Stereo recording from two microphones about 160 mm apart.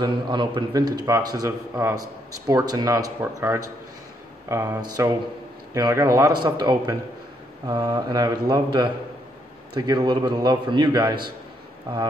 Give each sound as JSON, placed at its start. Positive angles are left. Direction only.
{"t": 0.0, "sound": "a man's voice", "side_deg": -25}
{"t": 9.8, "sound": "a man's voice", "side_deg": -25}